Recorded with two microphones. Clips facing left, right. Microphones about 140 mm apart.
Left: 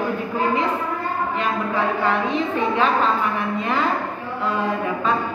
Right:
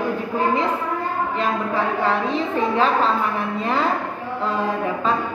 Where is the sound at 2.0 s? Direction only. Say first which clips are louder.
Even; 35° right (ahead or behind).